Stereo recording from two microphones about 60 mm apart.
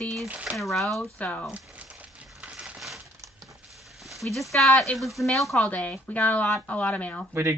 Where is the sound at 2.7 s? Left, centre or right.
Centre.